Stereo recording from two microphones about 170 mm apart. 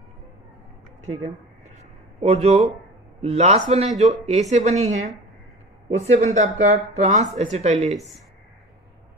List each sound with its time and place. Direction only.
2.2 s speech: 35° right (ahead or behind)